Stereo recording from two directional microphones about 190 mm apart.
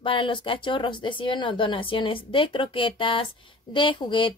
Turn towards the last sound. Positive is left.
turn(degrees=25)  # may be behind; listen again after turning